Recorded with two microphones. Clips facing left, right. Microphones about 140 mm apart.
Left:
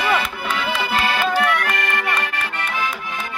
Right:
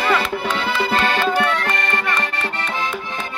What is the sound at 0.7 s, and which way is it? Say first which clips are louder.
Music: right 3 dB; 30° right (ahead or behind).